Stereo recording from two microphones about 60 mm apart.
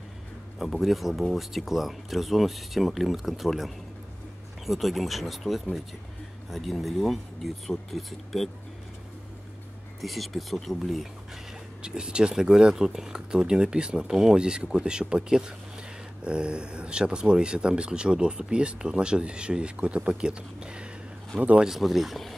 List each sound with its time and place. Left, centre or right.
0.6 s speech: centre
10.0 s speech: centre
11.8 s speech: centre
21.6 s speech: centre